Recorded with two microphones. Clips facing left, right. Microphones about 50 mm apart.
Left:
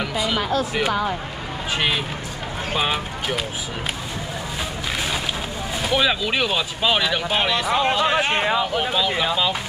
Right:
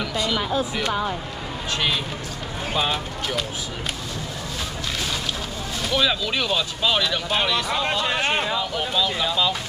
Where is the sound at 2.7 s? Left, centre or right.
Centre.